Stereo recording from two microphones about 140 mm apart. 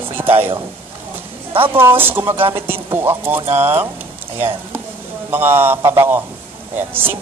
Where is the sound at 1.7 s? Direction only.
15° right (ahead or behind).